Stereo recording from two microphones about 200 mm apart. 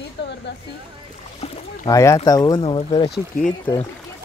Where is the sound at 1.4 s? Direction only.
30° left (ahead or behind).